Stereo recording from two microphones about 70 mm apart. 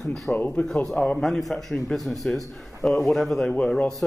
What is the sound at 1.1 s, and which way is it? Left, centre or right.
A man's voice, centre.